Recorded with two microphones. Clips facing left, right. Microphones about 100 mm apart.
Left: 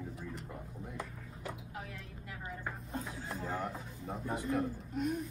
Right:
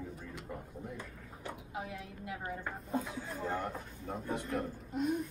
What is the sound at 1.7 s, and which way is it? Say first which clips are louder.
Speech: right 4 dB; 15° right (ahead or behind).